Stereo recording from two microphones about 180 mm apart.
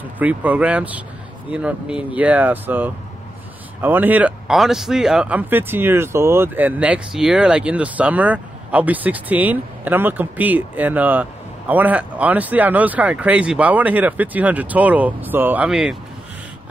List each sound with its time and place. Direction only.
0.2 s speech: 10° right (ahead or behind)